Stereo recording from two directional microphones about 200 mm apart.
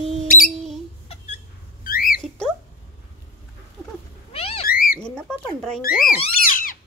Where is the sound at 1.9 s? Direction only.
45° left (ahead or behind).